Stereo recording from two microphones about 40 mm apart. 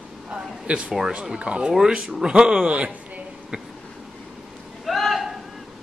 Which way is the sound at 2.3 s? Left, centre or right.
Right.